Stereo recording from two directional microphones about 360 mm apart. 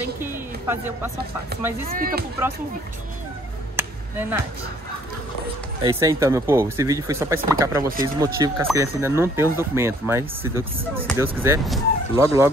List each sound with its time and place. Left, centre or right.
0.2 s music: centre
1.9 s speech: right
3.7 s a sound: centre
5.8 s speech: centre